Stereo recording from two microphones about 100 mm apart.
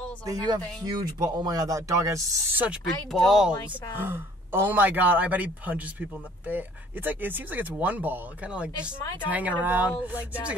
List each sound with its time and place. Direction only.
0.3 s speech: 45° right (ahead or behind)
3.1 s speech: centre (ahead or behind)
4.0 s speech: 20° right (ahead or behind)